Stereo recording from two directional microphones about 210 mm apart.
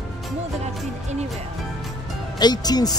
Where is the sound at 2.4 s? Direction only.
20° left (ahead or behind).